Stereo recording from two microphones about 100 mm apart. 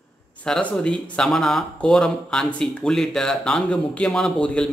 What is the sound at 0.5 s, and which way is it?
Speech, 10° left (ahead or behind).